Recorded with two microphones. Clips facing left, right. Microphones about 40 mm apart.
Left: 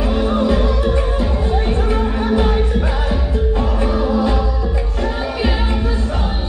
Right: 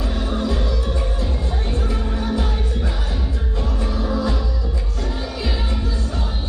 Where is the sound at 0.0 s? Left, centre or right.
Left.